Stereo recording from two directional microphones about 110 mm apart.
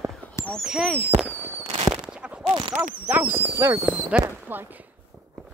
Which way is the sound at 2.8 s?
15° right (ahead or behind).